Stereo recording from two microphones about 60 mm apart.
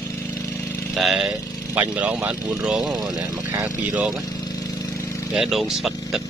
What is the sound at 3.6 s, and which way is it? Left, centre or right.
Speech, right.